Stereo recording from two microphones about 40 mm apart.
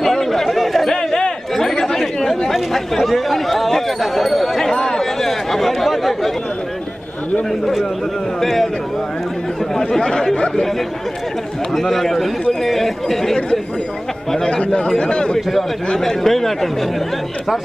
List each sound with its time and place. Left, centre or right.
0.0 s a sound: centre
1.5 s chatter: centre
8.4 s a man's voice: centre
9.8 s speech: centre
11.7 s a man's voice: centre
14.6 s a man's voice: left
16.0 s a man's voice: centre